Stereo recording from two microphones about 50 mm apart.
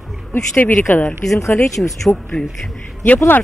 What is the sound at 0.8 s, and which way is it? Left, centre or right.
Speech, left.